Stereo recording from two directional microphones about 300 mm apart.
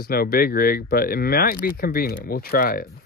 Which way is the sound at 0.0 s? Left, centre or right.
Left.